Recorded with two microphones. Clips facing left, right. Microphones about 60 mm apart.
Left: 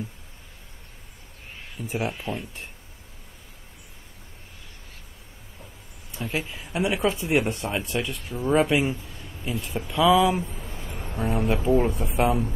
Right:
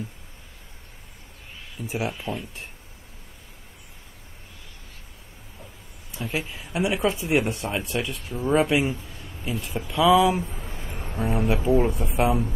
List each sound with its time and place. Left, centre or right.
1.8 s speech: centre
6.1 s speech: centre
9.0 s a sound: centre
9.4 s speech: centre
10.4 s speech: centre
11.1 s speech: centre